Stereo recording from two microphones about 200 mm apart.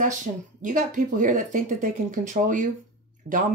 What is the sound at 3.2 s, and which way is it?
Speech, 50° right (ahead or behind).